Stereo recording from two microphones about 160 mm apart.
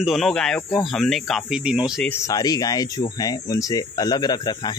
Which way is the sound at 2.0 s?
15° left (ahead or behind).